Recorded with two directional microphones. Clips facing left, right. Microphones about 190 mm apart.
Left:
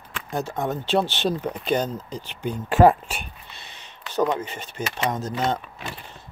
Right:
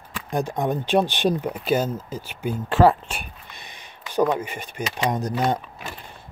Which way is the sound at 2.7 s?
15° left (ahead or behind).